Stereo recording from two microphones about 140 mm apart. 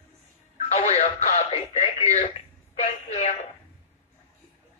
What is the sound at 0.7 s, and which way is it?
Speech, 55° left (ahead or behind).